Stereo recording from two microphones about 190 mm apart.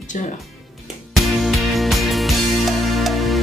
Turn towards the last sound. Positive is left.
turn(degrees=0)  # may be behind; listen again after turning